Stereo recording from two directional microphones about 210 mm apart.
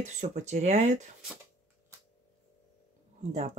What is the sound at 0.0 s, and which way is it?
Speech, 35° right (ahead or behind).